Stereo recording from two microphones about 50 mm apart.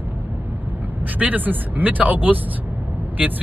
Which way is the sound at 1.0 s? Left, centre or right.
Right.